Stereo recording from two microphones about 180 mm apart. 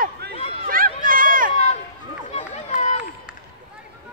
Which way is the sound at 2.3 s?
40° left (ahead or behind).